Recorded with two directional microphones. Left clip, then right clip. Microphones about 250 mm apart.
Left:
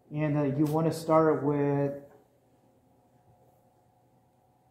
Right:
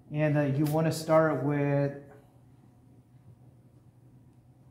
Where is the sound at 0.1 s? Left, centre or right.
Right.